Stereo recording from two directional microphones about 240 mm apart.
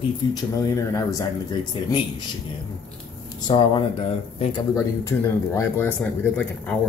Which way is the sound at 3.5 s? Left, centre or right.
Centre.